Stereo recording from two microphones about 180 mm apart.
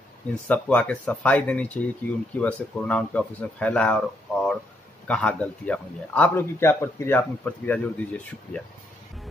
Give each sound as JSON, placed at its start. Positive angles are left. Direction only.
{"t": 0.3, "sound": "a man's voice", "side_deg": 5}